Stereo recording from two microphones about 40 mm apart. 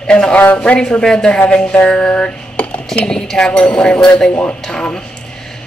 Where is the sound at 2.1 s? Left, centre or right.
Left.